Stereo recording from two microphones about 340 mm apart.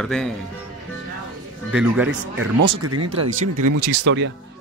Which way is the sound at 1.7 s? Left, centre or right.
Centre.